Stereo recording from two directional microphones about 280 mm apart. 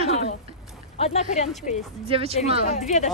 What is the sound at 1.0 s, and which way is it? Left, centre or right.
Speech, left.